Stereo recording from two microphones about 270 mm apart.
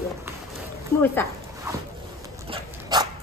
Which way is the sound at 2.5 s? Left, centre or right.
Centre.